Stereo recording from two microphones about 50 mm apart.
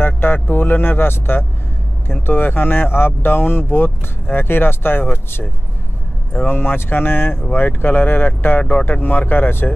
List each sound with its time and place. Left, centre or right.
0.0 s speech: left